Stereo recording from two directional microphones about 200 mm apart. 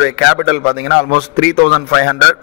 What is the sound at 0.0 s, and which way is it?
A man's voice, 55° left (ahead or behind).